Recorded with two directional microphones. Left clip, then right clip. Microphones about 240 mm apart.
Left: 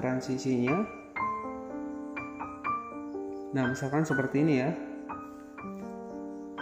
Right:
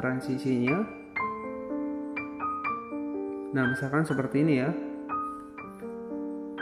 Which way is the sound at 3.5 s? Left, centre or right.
Centre.